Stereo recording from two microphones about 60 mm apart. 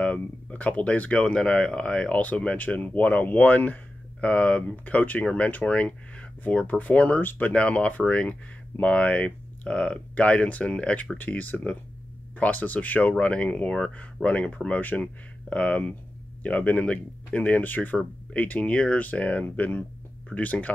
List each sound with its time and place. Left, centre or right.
0.0 s speech: left